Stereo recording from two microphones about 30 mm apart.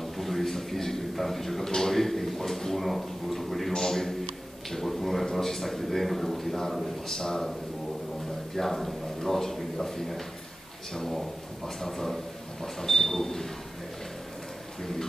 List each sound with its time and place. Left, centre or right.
0.0 s a sound: centre
1.1 s a man's voice: centre
3.7 s a man's voice: centre
4.6 s a sound: centre
5.2 s a man's voice: centre
8.5 s a man's voice: centre
14.8 s a man's voice: centre